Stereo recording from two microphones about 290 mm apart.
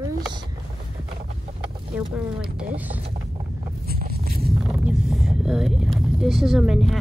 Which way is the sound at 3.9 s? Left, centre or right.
Right.